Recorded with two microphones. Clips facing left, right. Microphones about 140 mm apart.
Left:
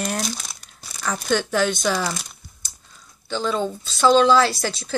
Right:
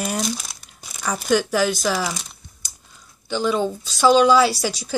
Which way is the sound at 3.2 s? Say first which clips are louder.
Right 2 dB; 10° right (ahead or behind).